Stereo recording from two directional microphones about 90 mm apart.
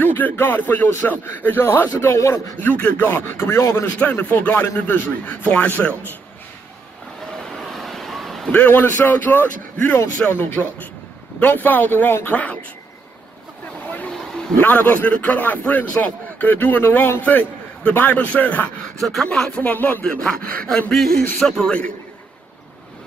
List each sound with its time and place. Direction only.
0.0 s a man's voice: 20° left (ahead or behind)
4.0 s a man's voice: 20° left (ahead or behind)
7.4 s vehicle: 5° left (ahead or behind)
8.5 s a man's voice: 20° left (ahead or behind)
14.6 s a man's voice: 15° left (ahead or behind)
18.9 s a man's voice: 5° left (ahead or behind)
19.6 s a man's voice: 20° left (ahead or behind)
20.0 s a man's voice: 10° left (ahead or behind)